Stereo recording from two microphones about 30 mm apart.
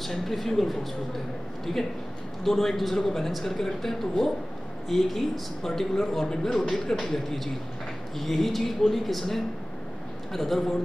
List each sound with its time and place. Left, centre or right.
0.0 s a man's voice: centre
10.3 s a man's voice: centre